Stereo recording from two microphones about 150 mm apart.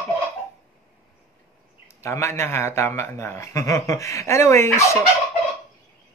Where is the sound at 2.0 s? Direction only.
20° left (ahead or behind).